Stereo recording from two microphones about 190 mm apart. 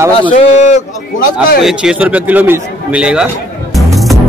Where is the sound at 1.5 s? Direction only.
Centre (ahead or behind).